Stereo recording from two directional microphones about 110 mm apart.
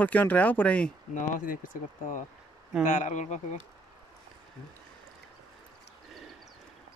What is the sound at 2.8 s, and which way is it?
Speech, 90° left.